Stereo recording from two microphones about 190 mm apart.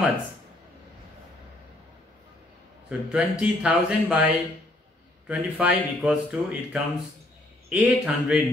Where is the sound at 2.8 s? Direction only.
5° right (ahead or behind).